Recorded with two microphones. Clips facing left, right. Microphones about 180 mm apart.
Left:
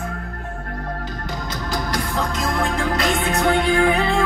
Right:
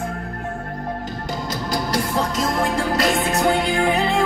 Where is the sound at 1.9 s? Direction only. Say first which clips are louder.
Right 4 dB; 20° right (ahead or behind).